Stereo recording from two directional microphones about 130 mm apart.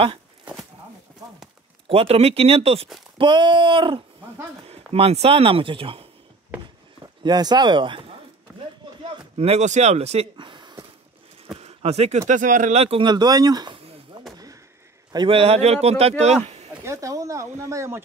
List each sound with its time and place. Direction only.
1.9 s speech: 50° right (ahead or behind)
3.2 s speech: 35° right (ahead or behind)
4.9 s speech: 50° right (ahead or behind)
7.2 s speech: 30° right (ahead or behind)
9.4 s speech: 55° right (ahead or behind)
10.3 s a sound: 35° right (ahead or behind)
11.5 s a sound: 50° right (ahead or behind)
12.3 s speech: 75° right (ahead or behind)
13.0 s speech: 35° right (ahead or behind)
15.1 s speech: 45° right (ahead or behind)
16.8 s speech: 25° right (ahead or behind)